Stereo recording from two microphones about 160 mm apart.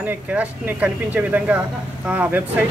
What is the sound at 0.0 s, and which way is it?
Speech, 10° right (ahead or behind).